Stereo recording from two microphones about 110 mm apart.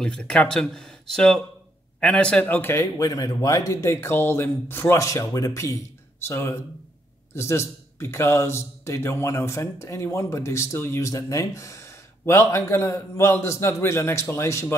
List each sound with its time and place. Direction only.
0.0 s a man's voice: 10° left (ahead or behind); by 14.8 s 25° left (ahead or behind)